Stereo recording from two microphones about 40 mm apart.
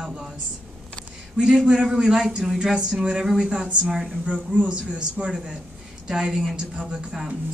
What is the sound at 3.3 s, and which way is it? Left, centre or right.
Speech, right.